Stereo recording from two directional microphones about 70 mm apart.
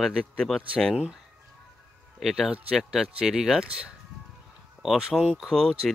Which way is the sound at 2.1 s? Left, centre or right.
Centre.